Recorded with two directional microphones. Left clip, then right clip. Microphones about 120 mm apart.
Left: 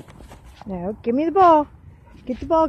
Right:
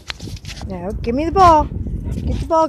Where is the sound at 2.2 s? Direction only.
90° right.